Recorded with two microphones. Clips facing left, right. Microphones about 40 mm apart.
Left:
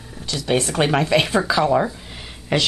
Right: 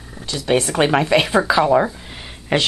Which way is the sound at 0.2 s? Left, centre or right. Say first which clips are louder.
Right 2 dB; centre.